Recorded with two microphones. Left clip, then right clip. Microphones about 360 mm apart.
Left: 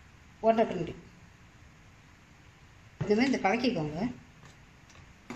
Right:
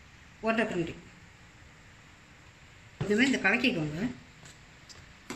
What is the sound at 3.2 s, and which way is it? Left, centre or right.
Speech, centre.